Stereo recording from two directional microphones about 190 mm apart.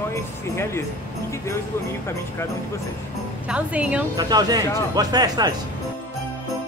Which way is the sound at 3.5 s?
5° right (ahead or behind).